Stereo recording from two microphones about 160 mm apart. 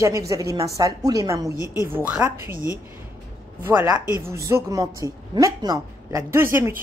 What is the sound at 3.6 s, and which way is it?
A woman's voice, 15° right (ahead or behind).